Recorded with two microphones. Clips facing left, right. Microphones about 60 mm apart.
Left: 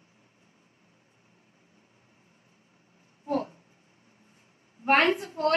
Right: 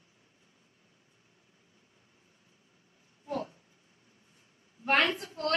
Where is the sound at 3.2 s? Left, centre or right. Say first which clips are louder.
Left 6 dB; left.